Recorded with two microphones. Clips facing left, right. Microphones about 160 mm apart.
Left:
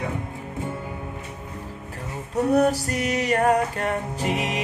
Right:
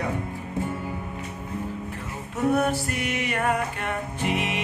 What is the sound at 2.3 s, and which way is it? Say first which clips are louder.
Music: left 3 dB; 40° left (ahead or behind).